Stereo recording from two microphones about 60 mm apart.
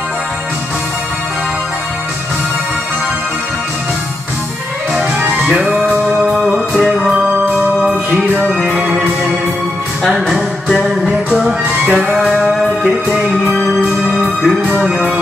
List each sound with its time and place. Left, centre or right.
4.9 s music: centre
6.2 s music: centre
7.1 s music: centre
8.5 s music: centre
10.0 s music: centre
11.8 s music: centre
12.3 s music: centre